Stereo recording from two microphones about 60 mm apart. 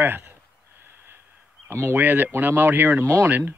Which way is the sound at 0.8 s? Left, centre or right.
Right.